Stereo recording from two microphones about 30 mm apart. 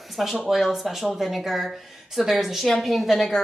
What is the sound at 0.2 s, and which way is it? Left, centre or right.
Speech, centre.